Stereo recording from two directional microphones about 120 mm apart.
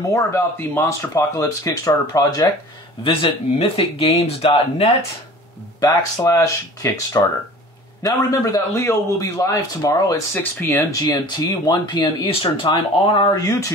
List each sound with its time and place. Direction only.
0.1 s a man's voice: 20° left (ahead or behind)
3.0 s speech: 50° left (ahead or behind)
5.8 s a man's voice: 30° left (ahead or behind); by 13.3 s 45° left (ahead or behind)
13.3 s a man's voice: 30° left (ahead or behind)